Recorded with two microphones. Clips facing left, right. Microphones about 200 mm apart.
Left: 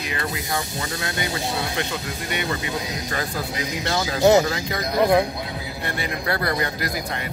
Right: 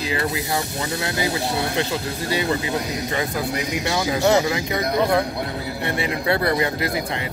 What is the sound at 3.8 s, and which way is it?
Speech, 15° right (ahead or behind).